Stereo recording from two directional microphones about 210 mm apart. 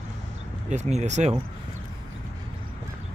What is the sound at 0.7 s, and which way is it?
Speech, 35° right (ahead or behind).